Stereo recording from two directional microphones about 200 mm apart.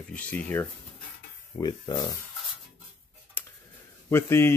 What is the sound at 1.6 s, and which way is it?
Speech, 20° left (ahead or behind).